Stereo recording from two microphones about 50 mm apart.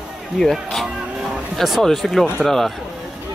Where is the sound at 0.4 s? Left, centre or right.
Centre.